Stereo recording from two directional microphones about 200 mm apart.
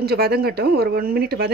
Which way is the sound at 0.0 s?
50° right (ahead or behind).